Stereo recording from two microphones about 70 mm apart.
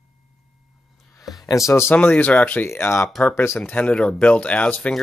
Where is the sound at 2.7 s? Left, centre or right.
Left.